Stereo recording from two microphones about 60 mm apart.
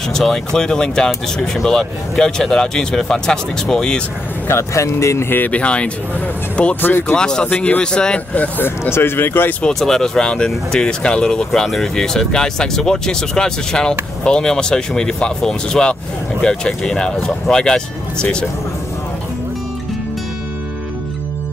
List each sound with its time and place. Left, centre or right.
0.1 s speech: centre
4.5 s speech: left
5.3 s speech: left
6.8 s speech: left
7.2 s speech: centre
7.4 s speech: left
7.8 s speech: centre
8.5 s speech: left
9.8 s speech: centre